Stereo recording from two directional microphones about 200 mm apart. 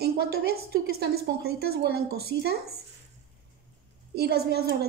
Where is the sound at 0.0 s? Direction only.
50° right (ahead or behind).